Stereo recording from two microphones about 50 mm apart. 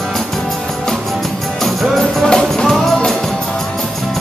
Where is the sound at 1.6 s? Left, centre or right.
Centre.